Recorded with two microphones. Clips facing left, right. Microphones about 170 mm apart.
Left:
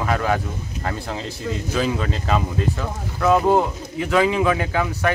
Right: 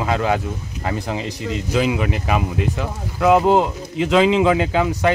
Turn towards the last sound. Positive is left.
turn(degrees=-20)  # may be behind; listen again after turning